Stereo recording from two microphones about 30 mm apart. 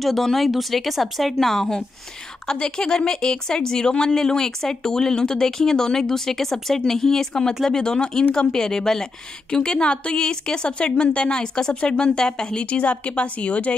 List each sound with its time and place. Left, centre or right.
0.0 s speech: centre
1.5 s speech: centre
2.6 s a woman's voice: left
12.6 s speech: left